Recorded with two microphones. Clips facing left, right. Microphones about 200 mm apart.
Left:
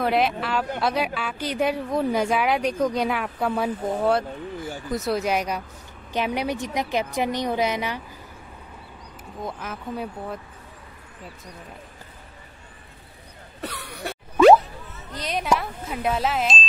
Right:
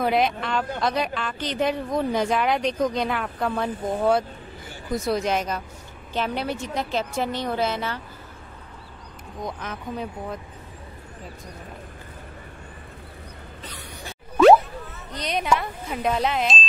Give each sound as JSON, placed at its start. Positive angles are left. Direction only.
{"t": 0.0, "sound": "a woman's voice", "side_deg": 0}
{"t": 9.4, "sound": "speech", "side_deg": 5}
{"t": 13.6, "sound": "a sound", "side_deg": 65}
{"t": 15.1, "sound": "speech", "side_deg": 0}